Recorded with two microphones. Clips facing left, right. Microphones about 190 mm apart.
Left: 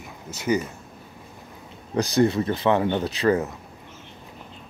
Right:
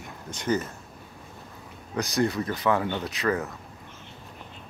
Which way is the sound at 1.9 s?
30° left (ahead or behind).